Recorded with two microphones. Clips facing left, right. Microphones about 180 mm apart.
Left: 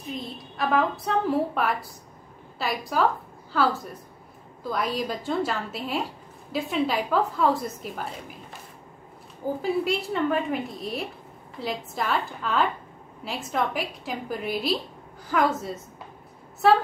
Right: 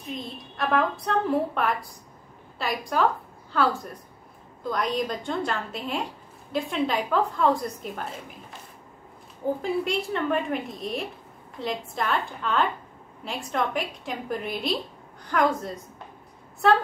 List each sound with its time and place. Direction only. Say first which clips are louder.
0.0 s a woman's voice: left 1 dB; centre (ahead or behind)
9.6 s a woman's voice: left 1 dB; centre (ahead or behind)